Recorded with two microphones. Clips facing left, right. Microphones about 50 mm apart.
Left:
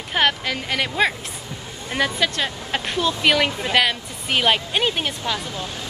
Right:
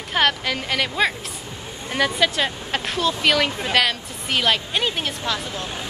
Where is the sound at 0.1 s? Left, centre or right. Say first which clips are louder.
Even; centre.